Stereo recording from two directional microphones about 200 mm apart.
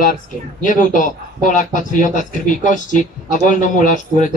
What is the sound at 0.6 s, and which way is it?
A man's voice, 40° left (ahead or behind).